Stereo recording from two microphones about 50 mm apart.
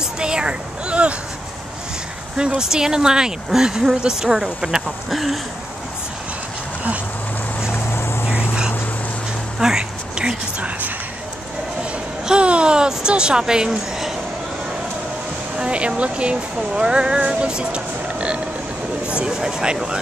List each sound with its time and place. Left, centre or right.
0.0 s a sound: centre
2.3 s speech: centre
5.1 s speech: centre
7.7 s vehicle: left
9.6 s a sound: centre
12.3 s speech: right
15.5 s speech: right